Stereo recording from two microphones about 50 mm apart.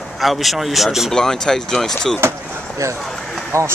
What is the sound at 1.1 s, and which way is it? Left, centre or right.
Speech, centre.